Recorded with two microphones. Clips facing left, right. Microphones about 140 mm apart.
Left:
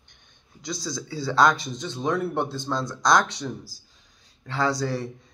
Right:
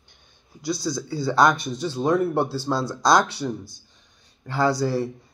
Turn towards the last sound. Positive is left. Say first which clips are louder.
# right 4 dB
turn(degrees=-5)  # may be behind; listen again after turning